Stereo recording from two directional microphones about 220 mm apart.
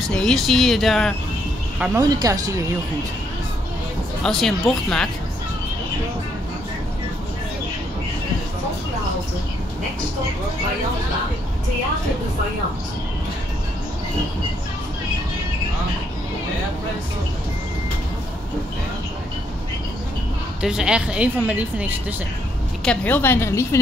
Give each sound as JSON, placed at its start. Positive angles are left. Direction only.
{"t": 0.1, "sound": "speech", "side_deg": 5}
{"t": 2.0, "sound": "speech", "side_deg": -15}
{"t": 4.2, "sound": "speech", "side_deg": 0}
{"t": 20.6, "sound": "speech", "side_deg": -5}
{"t": 22.8, "sound": "a woman's voice", "side_deg": 10}